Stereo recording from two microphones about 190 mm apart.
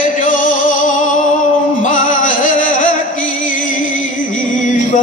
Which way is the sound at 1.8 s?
40° left (ahead or behind).